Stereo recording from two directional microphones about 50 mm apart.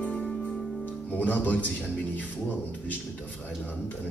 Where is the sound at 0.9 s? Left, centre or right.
Left.